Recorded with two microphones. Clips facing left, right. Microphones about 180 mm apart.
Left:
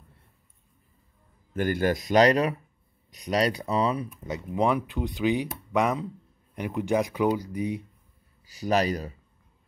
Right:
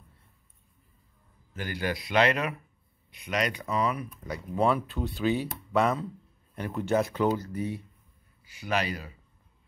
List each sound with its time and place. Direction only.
1.5 s speech: 50° left (ahead or behind); by 4.1 s 30° left (ahead or behind)
4.6 s speech: 15° left (ahead or behind)
8.5 s speech: 40° left (ahead or behind)